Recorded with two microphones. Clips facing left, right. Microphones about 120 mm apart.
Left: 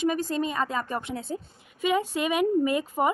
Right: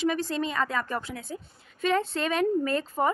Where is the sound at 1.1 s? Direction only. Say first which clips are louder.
Left 5 dB; 30° left (ahead or behind).